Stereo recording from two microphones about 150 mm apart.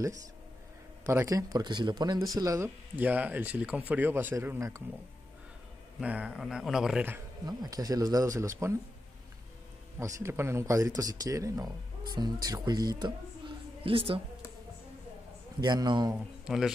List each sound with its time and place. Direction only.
1.0 s speech: 20° right (ahead or behind)
3.0 s speech: 10° right (ahead or behind)
5.9 s speech: 10° right (ahead or behind)
7.4 s speech: 25° right (ahead or behind)
9.9 s speech: 20° right (ahead or behind)
13.8 s a woman's voice: 35° right (ahead or behind)
15.6 s speech: 30° right (ahead or behind)
16.4 s speech: 5° right (ahead or behind)